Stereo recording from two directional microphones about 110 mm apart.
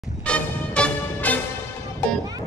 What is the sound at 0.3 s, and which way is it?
Music, 10° left (ahead or behind).